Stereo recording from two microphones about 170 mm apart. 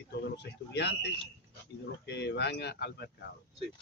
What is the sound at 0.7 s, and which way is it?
Speech, 85° left.